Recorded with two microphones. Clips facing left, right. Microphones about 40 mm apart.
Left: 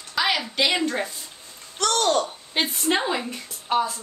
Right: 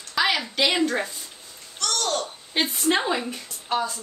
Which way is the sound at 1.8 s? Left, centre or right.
Left.